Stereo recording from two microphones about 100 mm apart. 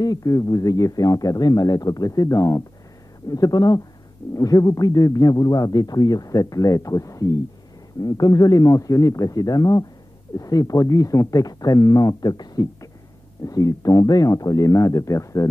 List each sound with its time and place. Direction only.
0.0 s a man's voice: 35° left (ahead or behind)